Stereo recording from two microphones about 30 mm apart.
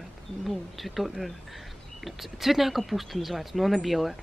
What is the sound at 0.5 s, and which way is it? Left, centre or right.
A woman's voice, centre.